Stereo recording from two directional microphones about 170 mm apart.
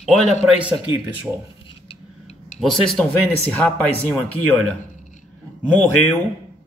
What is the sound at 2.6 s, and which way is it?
A man's voice, centre (ahead or behind).